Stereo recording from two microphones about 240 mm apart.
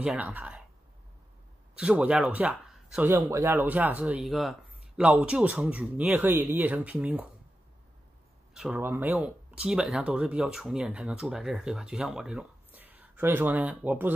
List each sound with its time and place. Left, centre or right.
0.0 s speech: centre
1.8 s speech: centre
8.5 s speech: centre